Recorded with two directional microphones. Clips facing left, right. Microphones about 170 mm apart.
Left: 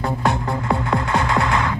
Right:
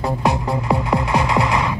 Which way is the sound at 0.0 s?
20° right (ahead or behind).